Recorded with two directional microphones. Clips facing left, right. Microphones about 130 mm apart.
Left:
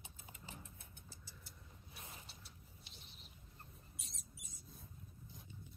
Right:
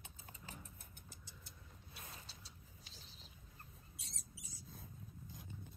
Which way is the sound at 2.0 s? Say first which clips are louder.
Even; 20° left (ahead or behind).